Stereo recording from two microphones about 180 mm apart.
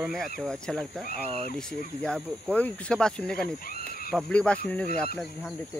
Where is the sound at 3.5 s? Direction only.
55° left (ahead or behind).